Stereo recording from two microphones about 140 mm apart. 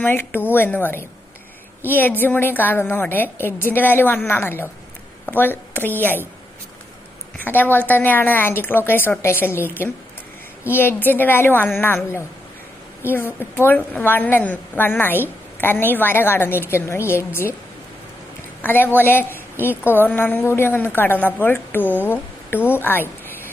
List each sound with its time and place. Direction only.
0.0 s a woman's voice: 15° left (ahead or behind)
7.4 s a woman's voice: 15° left (ahead or behind)
10.7 s a woman's voice: 15° left (ahead or behind)
18.6 s a woman's voice: 15° left (ahead or behind)